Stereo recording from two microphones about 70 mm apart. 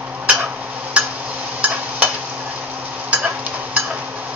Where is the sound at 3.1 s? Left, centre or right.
Right.